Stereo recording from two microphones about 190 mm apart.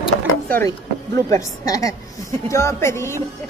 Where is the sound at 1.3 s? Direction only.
15° left (ahead or behind).